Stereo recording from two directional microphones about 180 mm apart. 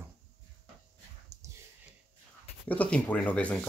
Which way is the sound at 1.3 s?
20° right (ahead or behind).